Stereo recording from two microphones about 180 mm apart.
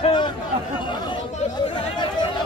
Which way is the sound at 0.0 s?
25° left (ahead or behind).